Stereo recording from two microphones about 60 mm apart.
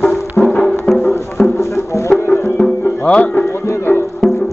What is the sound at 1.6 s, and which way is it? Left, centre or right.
Music, left.